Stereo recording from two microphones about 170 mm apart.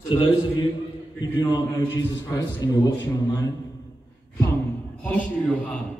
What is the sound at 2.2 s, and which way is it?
A man's voice, 20° left (ahead or behind).